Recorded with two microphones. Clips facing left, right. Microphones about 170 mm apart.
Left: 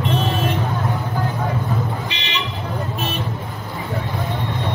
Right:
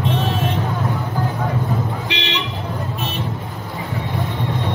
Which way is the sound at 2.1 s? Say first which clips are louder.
Right 5 dB; 90° right.